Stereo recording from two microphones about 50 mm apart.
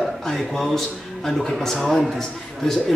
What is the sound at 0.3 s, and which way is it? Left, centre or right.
Speech, centre.